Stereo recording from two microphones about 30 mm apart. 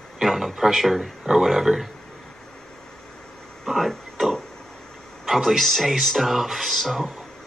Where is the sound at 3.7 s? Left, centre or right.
Centre.